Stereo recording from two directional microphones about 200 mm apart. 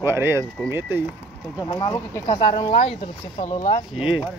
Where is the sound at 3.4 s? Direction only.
40° left (ahead or behind).